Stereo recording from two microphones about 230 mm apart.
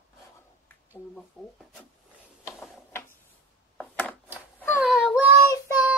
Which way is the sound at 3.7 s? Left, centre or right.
Centre.